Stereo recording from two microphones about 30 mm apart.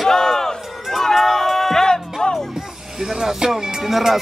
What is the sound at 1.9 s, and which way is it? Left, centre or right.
Music, left.